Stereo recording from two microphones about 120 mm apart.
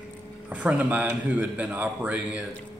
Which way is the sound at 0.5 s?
10° right (ahead or behind).